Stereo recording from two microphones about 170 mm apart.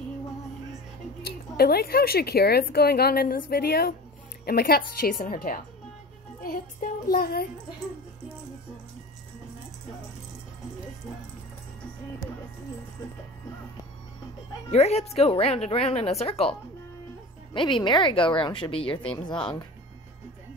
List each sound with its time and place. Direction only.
1.2 s a woman's voice: 65° left (ahead or behind)
14.7 s speech: 40° left (ahead or behind)
17.6 s a woman's voice: 30° left (ahead or behind)